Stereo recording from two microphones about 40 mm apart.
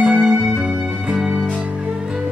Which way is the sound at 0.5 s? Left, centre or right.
Right.